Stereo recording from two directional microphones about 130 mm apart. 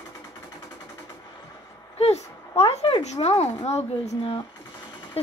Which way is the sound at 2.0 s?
55° left (ahead or behind).